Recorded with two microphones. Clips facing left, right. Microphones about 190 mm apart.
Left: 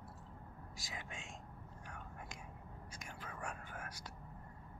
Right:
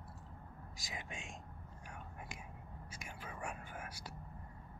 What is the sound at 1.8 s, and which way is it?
Whispering, 10° right (ahead or behind).